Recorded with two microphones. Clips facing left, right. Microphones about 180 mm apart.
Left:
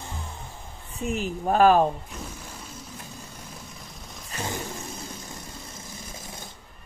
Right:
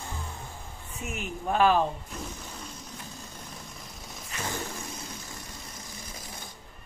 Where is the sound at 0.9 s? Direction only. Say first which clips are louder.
Left 7 dB; 35° left (ahead or behind).